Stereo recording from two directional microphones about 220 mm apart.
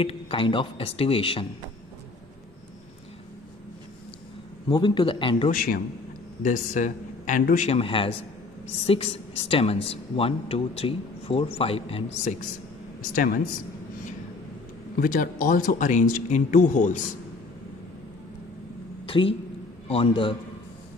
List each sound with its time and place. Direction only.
0.0 s a woman's voice: 25° left (ahead or behind)
4.6 s a woman's voice: 20° left (ahead or behind)
5.5 s a woman's voice: 40° left (ahead or behind)
13.1 s speech: 40° left (ahead or behind)
15.0 s speech: 40° left (ahead or behind)
19.0 s a woman's voice: 25° left (ahead or behind)